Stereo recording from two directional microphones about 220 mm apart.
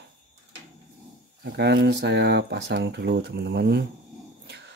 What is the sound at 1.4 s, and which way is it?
Speech, 50° right (ahead or behind).